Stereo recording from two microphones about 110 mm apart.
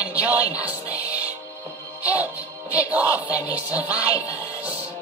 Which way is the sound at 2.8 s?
15° right (ahead or behind).